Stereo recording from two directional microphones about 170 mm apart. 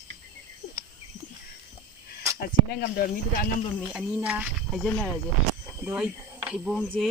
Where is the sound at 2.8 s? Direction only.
55° left (ahead or behind).